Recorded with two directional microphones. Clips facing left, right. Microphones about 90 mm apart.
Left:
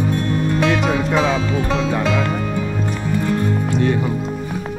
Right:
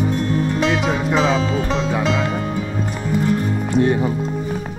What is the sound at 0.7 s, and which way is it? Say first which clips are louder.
Music: left 1 dB; 5° left (ahead or behind).